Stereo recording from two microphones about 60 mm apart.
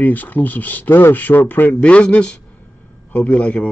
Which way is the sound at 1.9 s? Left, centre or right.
Left.